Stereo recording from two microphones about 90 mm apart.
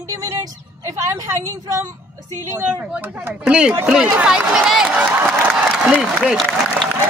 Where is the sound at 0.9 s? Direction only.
40° right (ahead or behind).